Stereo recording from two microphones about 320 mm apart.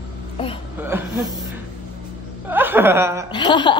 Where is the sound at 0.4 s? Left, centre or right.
Centre.